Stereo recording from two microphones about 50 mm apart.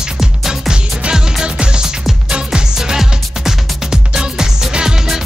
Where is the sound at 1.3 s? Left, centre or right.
Centre.